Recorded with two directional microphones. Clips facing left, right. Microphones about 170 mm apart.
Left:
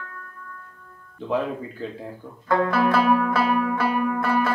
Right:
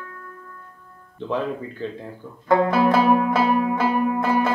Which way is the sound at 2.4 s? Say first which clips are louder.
Right 3 dB; 20° right (ahead or behind).